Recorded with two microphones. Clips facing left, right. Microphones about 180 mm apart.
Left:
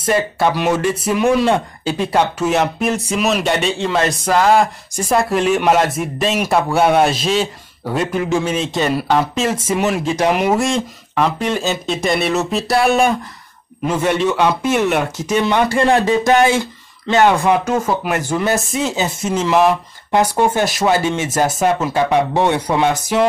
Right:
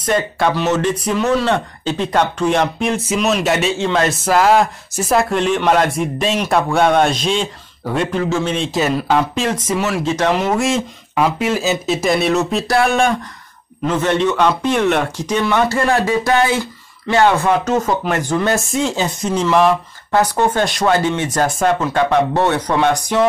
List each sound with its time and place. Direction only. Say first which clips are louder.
0.1 s speech: left 1 dB; 10° left (ahead or behind)
8.5 s speech: even; centre (ahead or behind)
9.8 s speech: left 1 dB; 15° left (ahead or behind)
10.6 s speech: even; 5° right (ahead or behind)
15.4 s speech: left 1 dB; 20° left (ahead or behind)
21.4 s speech: left 2 dB; 20° left (ahead or behind)
21.6 s speech: right 2 dB; 10° left (ahead or behind)